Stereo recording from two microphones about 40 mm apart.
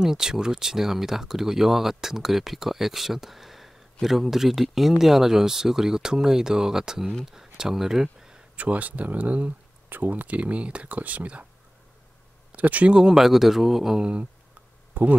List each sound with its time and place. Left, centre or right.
0.0 s speech: centre
8.5 s speech: right
9.8 s speech: right
12.5 s speech: right
12.9 s speech: centre
15.0 s speech: right